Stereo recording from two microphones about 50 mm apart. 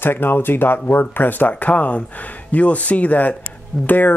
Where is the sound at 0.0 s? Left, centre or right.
Left.